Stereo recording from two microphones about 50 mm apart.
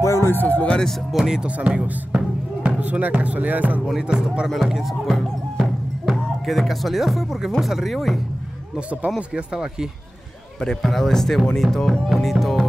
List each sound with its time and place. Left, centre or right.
0.0 s music: left
0.3 s speech: left
1.1 s speech: centre
1.5 s speech: right
3.8 s speech: centre
4.6 s speech: centre
9.3 s speech: centre
10.8 s speech: centre